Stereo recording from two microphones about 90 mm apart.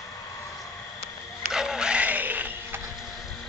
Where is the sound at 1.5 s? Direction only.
5° right (ahead or behind).